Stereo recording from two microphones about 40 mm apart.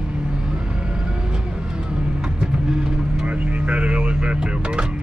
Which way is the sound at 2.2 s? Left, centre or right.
Centre.